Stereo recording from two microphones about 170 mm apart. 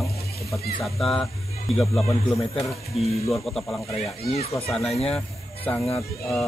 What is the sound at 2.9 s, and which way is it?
Speech, 35° left (ahead or behind).